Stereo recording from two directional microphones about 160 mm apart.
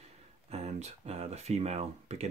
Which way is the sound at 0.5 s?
40° right (ahead or behind).